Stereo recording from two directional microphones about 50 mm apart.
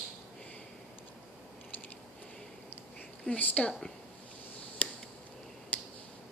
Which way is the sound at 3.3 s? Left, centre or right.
Left.